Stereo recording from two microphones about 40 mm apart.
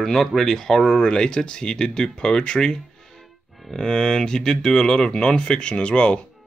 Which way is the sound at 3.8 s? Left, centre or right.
Centre.